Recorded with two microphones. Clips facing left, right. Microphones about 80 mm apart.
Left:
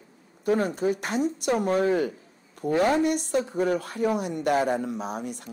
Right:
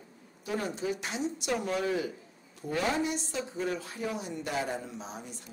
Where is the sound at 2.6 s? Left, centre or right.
Left.